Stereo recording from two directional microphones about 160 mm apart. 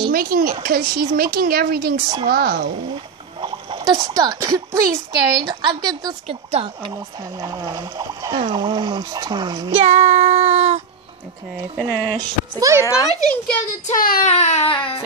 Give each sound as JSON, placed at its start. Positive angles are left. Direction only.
{"t": 0.1, "sound": "speech", "side_deg": -65}
{"t": 3.3, "sound": "speech", "side_deg": -30}
{"t": 6.2, "sound": "speech", "side_deg": -35}
{"t": 9.8, "sound": "child singing", "side_deg": -45}
{"t": 11.7, "sound": "speech", "side_deg": 10}
{"t": 12.2, "sound": "speech", "side_deg": -20}
{"t": 12.8, "sound": "a child's voice", "side_deg": 20}
{"t": 13.8, "sound": "child singing", "side_deg": 60}
{"t": 14.2, "sound": "baby cry", "side_deg": 45}